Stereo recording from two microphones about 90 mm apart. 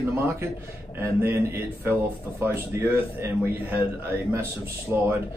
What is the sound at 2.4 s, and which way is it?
A man's voice, 25° right (ahead or behind).